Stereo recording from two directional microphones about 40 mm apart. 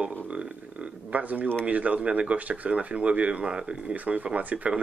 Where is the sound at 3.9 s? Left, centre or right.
Right.